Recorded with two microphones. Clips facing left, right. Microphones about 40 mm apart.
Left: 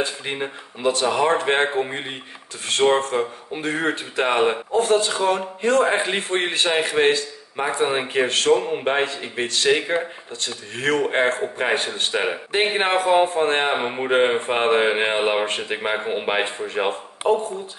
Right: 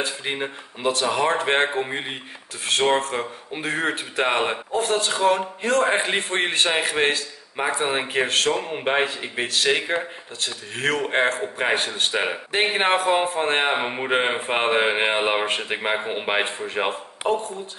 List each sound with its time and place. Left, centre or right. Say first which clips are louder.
0.2 s speech: even; centre
11.6 s a man's voice: right 1 dB; centre